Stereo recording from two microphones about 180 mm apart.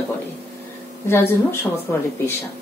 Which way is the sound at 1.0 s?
15° left (ahead or behind).